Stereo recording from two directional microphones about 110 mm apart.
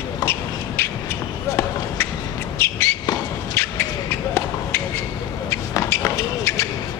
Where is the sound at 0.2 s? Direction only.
20° left (ahead or behind).